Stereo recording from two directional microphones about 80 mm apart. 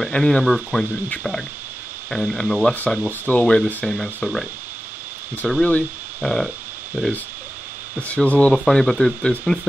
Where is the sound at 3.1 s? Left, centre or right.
Left.